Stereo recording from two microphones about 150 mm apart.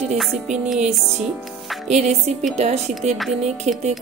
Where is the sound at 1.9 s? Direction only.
50° right (ahead or behind).